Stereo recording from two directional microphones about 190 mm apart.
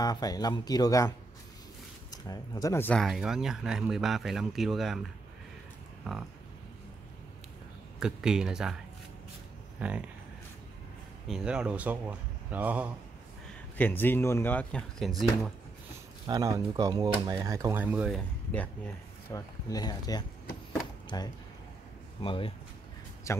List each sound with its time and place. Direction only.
0.0 s speech: 20° left (ahead or behind); by 5.0 s centre (ahead or behind)
8.0 s speech: 5° right (ahead or behind)
9.8 s speech: 5° right (ahead or behind)
11.2 s speech: 5° right (ahead or behind)
13.7 s speech: 10° left (ahead or behind)
16.3 s speech: 20° right (ahead or behind); by 18.7 s 5° left (ahead or behind)
19.3 s speech: 20° left (ahead or behind)
23.3 s speech: 15° left (ahead or behind)